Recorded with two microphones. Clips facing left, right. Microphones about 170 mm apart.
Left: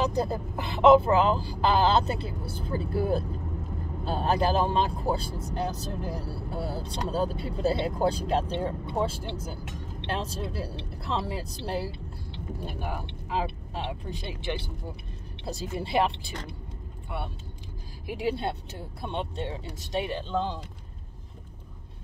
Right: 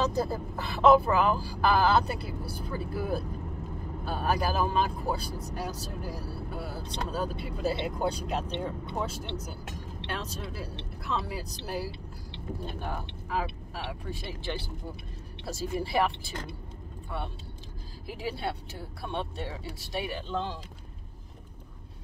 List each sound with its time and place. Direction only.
0.0 s speech: 20° left (ahead or behind)
12.6 s speech: 10° left (ahead or behind)
13.3 s speech: 20° left (ahead or behind)
18.0 s speech: 20° left (ahead or behind)